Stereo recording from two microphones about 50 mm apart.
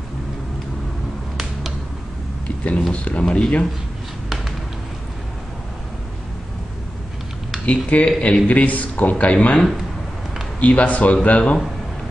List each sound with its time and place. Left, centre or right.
1.3 s finger snapping: centre
2.4 s a sound: left
2.9 s speech: left
7.6 s a man's voice: left
9.6 s speech: centre
10.6 s speech: left